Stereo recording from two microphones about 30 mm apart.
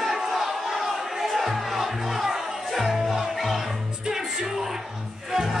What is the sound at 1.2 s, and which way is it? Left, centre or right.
Music, centre.